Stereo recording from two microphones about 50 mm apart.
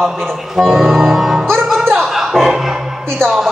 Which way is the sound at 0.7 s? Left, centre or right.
Centre.